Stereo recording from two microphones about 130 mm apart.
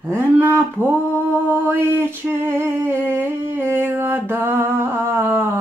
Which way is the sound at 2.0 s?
15° right (ahead or behind).